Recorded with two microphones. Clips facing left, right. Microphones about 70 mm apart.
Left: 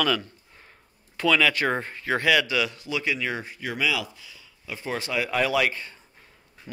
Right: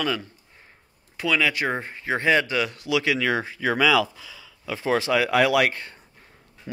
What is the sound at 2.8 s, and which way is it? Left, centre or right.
Speech, right.